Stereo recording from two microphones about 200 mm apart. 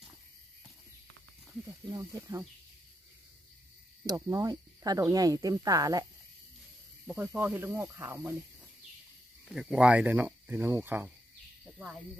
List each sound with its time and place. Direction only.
1.7 s speech: 15° right (ahead or behind)
4.0 s speech: 20° right (ahead or behind)
7.1 s speech: 10° right (ahead or behind)
9.5 s speech: 5° right (ahead or behind)
11.6 s a sound: 5° right (ahead or behind)